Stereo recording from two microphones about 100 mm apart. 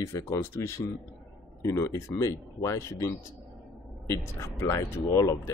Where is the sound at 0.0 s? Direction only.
30° left (ahead or behind).